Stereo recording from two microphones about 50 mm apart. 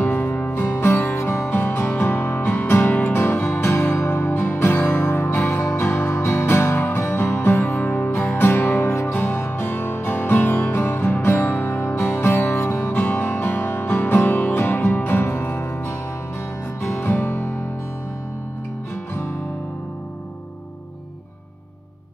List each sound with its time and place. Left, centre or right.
0.0 s music: left
1.5 s music: left
4.0 s music: left
4.4 s music: left
5.8 s music: left
8.4 s music: left
9.0 s music: left
13.0 s music: left
17.0 s music: left